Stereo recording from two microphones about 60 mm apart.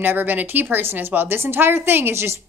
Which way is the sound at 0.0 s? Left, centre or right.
Right.